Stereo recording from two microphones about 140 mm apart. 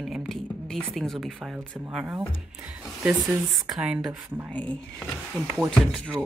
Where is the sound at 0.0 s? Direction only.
Centre (ahead or behind).